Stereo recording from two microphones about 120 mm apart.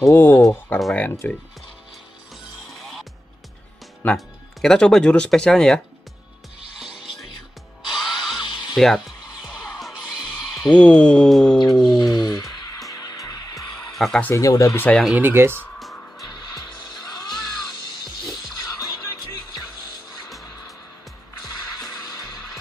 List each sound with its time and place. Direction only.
0.1 s speech: 20° left (ahead or behind)
0.7 s music: centre (ahead or behind)
1.2 s a sound: 15° left (ahead or behind)
2.7 s music: centre (ahead or behind)
4.0 s speech: 5° left (ahead or behind)
7.9 s music: centre (ahead or behind)
8.4 s tools: 40° left (ahead or behind)
8.7 s music: centre (ahead or behind)
10.7 s a sound: 10° left (ahead or behind)
11.5 s a sound: 35° left (ahead or behind)
12.0 s music: 35° left (ahead or behind)
13.9 s speech: centre (ahead or behind)
14.3 s speech: 30° left (ahead or behind)
15.1 s speech: 20° right (ahead or behind)